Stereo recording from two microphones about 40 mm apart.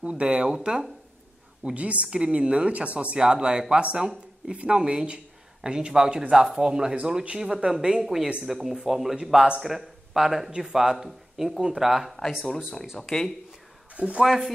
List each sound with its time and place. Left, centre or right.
0.0 s speech: right
1.6 s a woman's voice: right
3.2 s speech: centre
8.0 s speech: centre
8.5 s chopping: centre
8.8 s speech: centre
13.9 s speech: right
14.2 s chopping: centre